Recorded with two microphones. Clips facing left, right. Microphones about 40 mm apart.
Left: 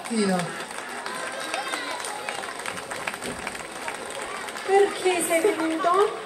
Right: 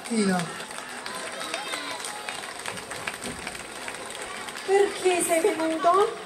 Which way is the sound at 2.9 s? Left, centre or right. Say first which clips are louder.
Left 3 dB; left.